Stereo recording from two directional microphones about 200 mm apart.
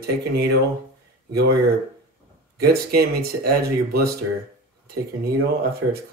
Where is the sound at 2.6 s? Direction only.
50° right (ahead or behind).